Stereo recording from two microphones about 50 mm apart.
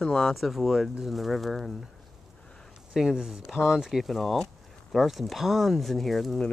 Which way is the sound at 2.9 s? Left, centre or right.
Centre.